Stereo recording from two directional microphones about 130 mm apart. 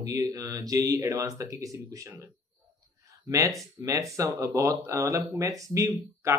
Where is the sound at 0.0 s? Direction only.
25° right (ahead or behind).